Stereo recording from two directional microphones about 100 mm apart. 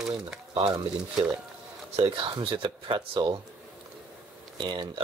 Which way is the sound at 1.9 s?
75° right (ahead or behind).